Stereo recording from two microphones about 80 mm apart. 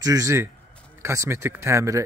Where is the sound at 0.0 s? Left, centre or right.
Right.